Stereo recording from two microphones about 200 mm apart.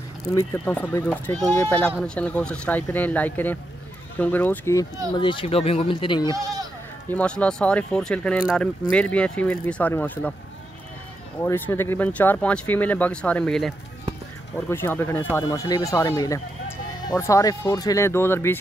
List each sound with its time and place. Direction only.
0.2 s speech: 15° left (ahead or behind)
5.1 s speech: 25° left (ahead or behind)
6.3 s bleat: 20° right (ahead or behind)
7.1 s speech: 5° left (ahead or behind)
11.4 s speech: 10° left (ahead or behind)